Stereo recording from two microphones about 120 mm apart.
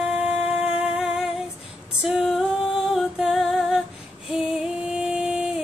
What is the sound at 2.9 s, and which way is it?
Music, 5° right (ahead or behind).